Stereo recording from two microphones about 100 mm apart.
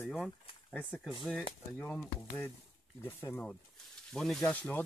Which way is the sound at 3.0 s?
25° left (ahead or behind).